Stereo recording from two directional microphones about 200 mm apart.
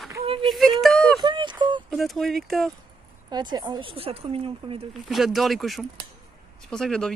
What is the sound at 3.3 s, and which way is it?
Speech, 20° right (ahead or behind).